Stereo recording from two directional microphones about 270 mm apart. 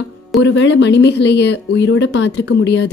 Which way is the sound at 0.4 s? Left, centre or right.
Left.